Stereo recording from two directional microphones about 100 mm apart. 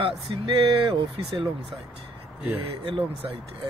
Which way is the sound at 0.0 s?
60° right (ahead or behind).